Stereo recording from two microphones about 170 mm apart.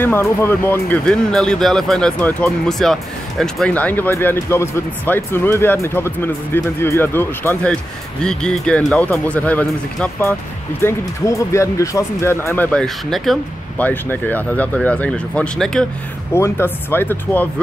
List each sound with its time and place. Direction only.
0.0 s speech: 15° left (ahead or behind)
16.3 s speech: 15° left (ahead or behind)